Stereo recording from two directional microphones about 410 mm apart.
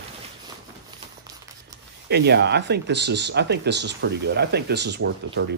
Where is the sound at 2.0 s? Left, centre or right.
Right.